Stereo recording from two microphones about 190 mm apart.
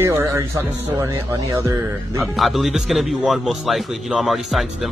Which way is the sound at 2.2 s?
Centre (ahead or behind).